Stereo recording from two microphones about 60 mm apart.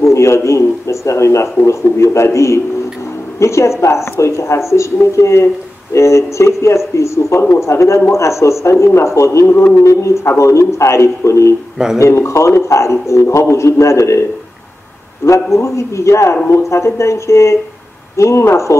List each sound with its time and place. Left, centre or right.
0.0 s a man's voice: left
15.2 s a man's voice: left